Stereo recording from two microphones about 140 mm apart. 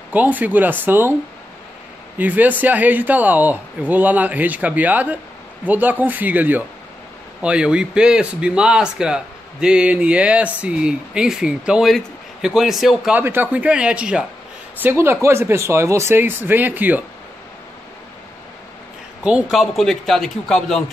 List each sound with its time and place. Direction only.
0.1 s speech: 10° right (ahead or behind)
2.1 s speech: 10° right (ahead or behind)
13.2 s speech: 15° right (ahead or behind)
19.2 s speech: 5° right (ahead or behind)